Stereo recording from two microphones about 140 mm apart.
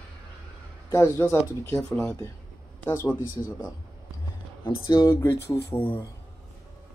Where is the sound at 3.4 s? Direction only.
20° left (ahead or behind).